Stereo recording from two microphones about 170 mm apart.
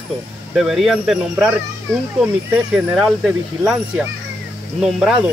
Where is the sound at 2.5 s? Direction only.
5° right (ahead or behind).